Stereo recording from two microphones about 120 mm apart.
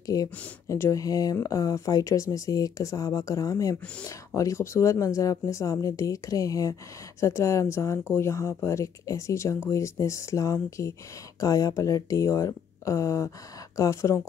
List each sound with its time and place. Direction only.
0.0 s speech: 30° left (ahead or behind)